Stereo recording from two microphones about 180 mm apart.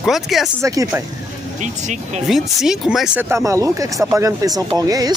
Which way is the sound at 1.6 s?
40° right (ahead or behind).